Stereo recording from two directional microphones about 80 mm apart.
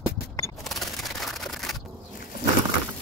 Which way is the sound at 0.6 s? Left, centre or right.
Centre.